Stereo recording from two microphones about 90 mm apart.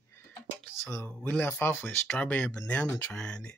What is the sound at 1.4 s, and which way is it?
Speech, 25° left (ahead or behind).